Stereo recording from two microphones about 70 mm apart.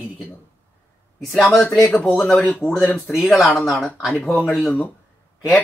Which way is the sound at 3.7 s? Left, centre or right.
Left.